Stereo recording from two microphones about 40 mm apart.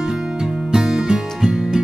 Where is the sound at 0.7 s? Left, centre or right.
Centre.